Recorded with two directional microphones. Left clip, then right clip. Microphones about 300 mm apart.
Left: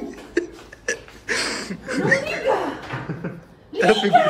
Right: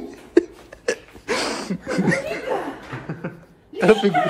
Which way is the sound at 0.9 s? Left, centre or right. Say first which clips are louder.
Left 1 dB; centre.